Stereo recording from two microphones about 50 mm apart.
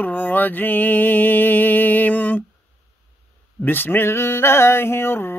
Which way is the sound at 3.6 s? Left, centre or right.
Left.